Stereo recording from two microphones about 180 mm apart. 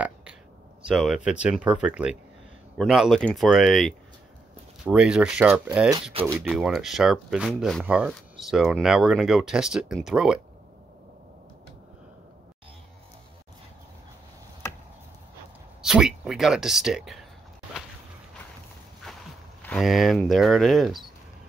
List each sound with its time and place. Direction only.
0.0 s a sound: 5° right (ahead or behind)
0.8 s speech: centre (ahead or behind)
6.2 s speech: 30° right (ahead or behind)
6.5 s speech: centre (ahead or behind)
14.6 s chop: 15° left (ahead or behind)
15.8 s a sound: 5° right (ahead or behind)
19.7 s speech: centre (ahead or behind)